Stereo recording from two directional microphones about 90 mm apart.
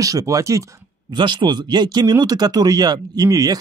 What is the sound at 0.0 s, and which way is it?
Speech, 40° right (ahead or behind).